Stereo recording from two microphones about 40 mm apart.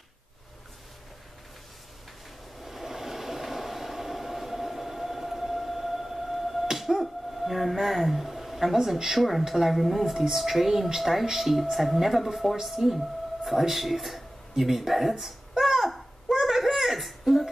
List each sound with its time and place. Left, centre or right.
2.6 s train: centre
9.5 s speech: centre
14.5 s a sound: centre